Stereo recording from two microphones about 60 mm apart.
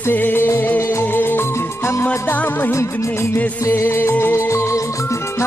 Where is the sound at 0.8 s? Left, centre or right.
Left.